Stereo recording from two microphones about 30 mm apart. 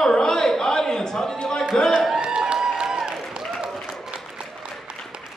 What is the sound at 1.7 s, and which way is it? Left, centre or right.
Speech, centre.